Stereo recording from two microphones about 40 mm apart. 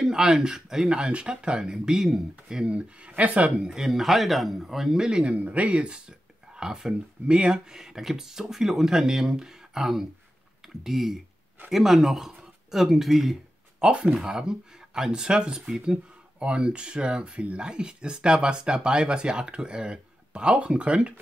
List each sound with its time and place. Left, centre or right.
0.0 s speech: centre
2.7 s speech: right
3.6 s speech: centre
5.2 s speech: right
7.7 s speech: centre
13.7 s speech: right